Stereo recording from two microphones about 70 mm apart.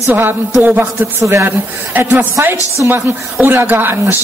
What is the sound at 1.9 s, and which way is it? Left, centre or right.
Speech, right.